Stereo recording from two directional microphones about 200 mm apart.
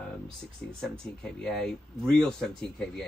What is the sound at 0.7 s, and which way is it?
Speech, centre (ahead or behind).